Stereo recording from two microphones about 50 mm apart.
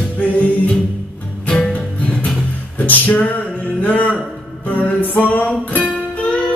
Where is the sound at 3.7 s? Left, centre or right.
Left.